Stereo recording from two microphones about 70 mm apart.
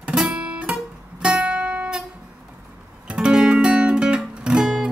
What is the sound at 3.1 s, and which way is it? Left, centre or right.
Music, centre.